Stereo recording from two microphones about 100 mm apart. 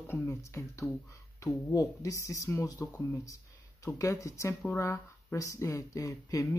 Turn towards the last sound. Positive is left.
turn(degrees=35)  # may be behind; listen again after turning